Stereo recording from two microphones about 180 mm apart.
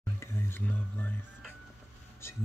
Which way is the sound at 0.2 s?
15° left (ahead or behind).